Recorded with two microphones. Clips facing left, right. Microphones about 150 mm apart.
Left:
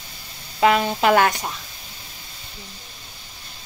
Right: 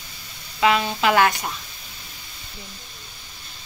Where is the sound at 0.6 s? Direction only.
45° left (ahead or behind).